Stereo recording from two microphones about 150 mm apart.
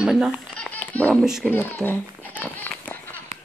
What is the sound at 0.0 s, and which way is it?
Speech, 5° right (ahead or behind).